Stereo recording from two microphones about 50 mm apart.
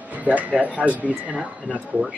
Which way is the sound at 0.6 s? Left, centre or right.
Right.